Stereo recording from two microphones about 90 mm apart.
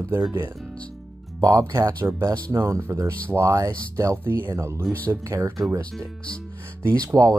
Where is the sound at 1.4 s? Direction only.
40° right (ahead or behind).